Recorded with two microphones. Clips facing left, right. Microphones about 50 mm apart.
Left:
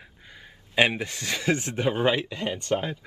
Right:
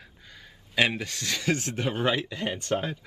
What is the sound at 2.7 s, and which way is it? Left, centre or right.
Speech, centre.